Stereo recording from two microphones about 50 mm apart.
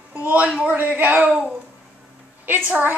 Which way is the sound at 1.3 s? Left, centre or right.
Centre.